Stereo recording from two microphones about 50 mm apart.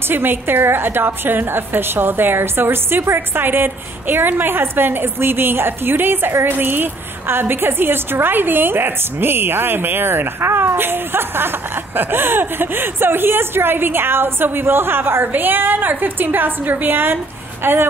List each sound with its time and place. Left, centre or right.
0.1 s a woman's voice: right